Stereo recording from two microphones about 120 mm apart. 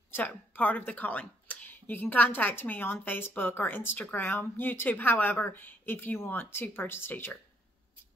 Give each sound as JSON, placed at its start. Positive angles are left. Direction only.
{"t": 0.1, "sound": "speech", "side_deg": 15}